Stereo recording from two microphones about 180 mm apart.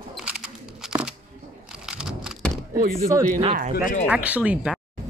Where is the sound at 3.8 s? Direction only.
50° left (ahead or behind).